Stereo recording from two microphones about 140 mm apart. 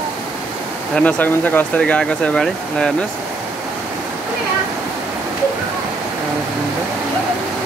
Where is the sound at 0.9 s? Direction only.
10° left (ahead or behind).